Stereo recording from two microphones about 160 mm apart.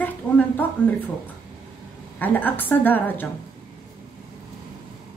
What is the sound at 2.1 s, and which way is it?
A woman's voice, 10° left (ahead or behind).